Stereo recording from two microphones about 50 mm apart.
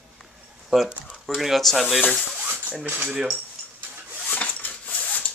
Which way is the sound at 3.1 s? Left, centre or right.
Centre.